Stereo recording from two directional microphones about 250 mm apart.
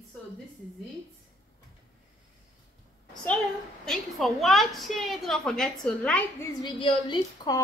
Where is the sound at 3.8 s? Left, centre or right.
Centre.